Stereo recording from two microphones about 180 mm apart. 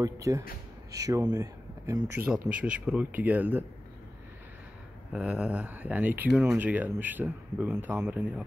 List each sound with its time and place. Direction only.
0.0 s speech: 20° right (ahead or behind)
5.1 s speech: 5° right (ahead or behind)